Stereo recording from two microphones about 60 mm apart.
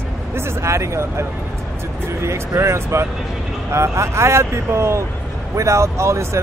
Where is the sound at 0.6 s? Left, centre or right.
Right.